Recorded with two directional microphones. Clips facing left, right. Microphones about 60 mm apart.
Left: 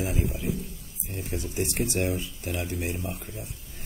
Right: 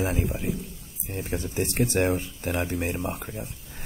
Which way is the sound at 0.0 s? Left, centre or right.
Right.